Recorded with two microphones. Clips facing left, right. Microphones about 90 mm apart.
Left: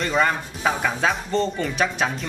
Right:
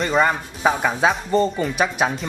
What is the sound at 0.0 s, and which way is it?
Speech, 5° right (ahead or behind).